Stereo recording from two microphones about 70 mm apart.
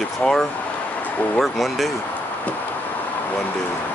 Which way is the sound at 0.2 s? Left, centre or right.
Centre.